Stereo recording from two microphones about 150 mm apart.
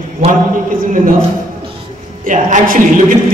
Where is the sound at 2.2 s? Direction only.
60° right (ahead or behind).